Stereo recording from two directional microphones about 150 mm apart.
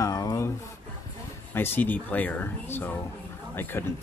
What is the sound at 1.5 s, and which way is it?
Speech, 15° left (ahead or behind).